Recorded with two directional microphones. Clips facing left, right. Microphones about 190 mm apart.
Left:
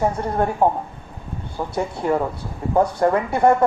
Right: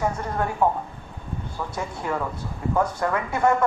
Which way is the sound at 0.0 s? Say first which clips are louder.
Left 5 dB; 30° left (ahead or behind).